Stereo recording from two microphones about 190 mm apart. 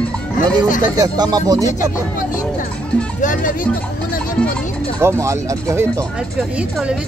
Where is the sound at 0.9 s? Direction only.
20° right (ahead or behind).